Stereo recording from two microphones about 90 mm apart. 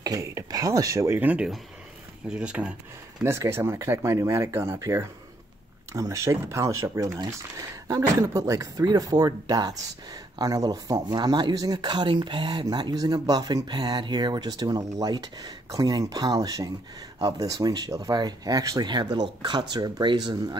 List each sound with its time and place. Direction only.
0.0 s speech: 40° right (ahead or behind)
1.2 s speech: 15° right (ahead or behind)
3.3 s speech: 30° right (ahead or behind)
18.9 s speech: 55° right (ahead or behind)